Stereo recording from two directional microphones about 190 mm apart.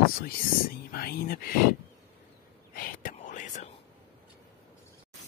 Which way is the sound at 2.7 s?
45° left (ahead or behind).